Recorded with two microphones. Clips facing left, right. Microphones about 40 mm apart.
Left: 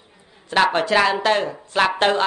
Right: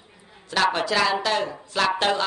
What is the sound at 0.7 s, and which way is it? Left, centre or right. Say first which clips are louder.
Speech: left 4 dB; left.